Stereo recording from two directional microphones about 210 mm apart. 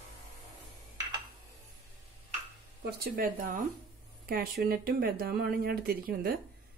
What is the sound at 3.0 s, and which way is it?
Speech, 45° right (ahead or behind).